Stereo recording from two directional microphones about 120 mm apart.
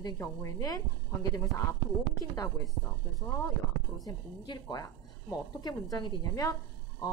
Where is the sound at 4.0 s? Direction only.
35° left (ahead or behind).